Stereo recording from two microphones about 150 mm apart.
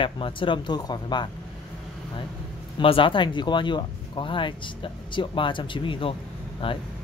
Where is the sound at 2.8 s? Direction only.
35° left (ahead or behind).